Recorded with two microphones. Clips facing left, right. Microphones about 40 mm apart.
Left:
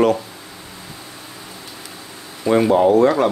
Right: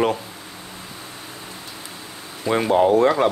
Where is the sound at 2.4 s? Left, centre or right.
Centre.